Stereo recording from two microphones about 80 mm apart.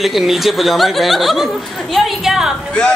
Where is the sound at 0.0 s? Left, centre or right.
Centre.